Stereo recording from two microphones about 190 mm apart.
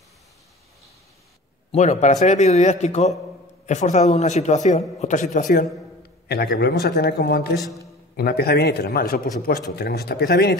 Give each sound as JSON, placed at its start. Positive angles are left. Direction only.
{"t": 1.7, "sound": "a man's voice", "side_deg": 35}